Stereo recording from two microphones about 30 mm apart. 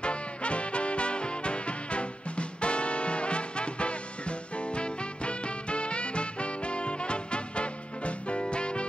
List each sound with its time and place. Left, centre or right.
0.0 s music: left